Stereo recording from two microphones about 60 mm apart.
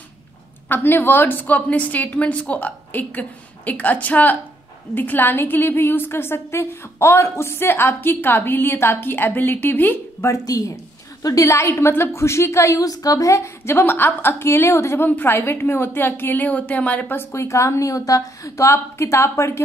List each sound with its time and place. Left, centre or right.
0.7 s a woman's voice: left
10.2 s speech: left
11.2 s a woman's voice: left
11.6 s a woman's voice: left
15.0 s a woman's voice: left
17.3 s a woman's voice: left